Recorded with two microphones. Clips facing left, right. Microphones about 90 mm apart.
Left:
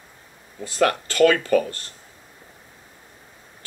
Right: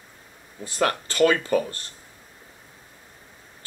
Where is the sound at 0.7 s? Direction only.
25° right (ahead or behind).